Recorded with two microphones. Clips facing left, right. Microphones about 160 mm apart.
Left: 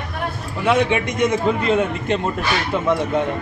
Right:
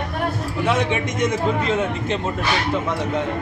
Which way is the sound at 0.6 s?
60° left (ahead or behind).